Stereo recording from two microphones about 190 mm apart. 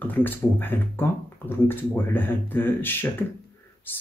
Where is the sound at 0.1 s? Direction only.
10° left (ahead or behind).